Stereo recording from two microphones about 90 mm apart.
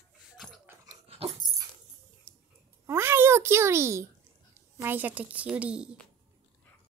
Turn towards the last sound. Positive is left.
turn(degrees=-15)  # may be behind; listen again after turning